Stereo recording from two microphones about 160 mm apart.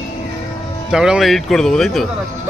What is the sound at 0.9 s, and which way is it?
Speech, 5° right (ahead or behind).